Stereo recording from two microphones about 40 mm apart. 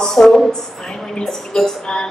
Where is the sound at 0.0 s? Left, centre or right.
Centre.